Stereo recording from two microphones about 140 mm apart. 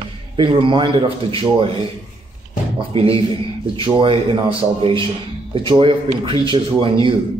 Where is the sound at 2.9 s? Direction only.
40° right (ahead or behind).